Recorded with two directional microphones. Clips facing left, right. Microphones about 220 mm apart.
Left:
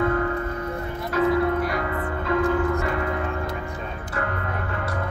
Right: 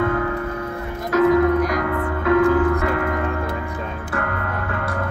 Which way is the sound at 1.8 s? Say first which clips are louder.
Right 4 dB; 70° right (ahead or behind).